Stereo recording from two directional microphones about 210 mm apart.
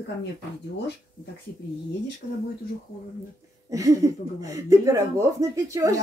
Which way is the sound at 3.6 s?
15° right (ahead or behind).